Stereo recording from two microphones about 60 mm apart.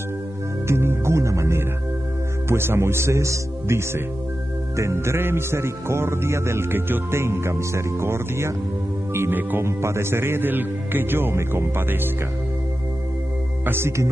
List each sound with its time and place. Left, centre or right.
0.7 s music: right
9.6 s speech: right
13.7 s music: right